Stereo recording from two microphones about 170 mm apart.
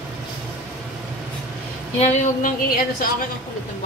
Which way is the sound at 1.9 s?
45° left (ahead or behind).